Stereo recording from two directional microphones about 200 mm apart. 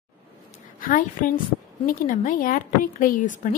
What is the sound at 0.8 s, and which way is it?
A woman's voice, 45° left (ahead or behind).